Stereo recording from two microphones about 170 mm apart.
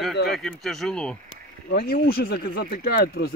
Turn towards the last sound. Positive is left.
turn(degrees=65)  # may be behind; listen again after turning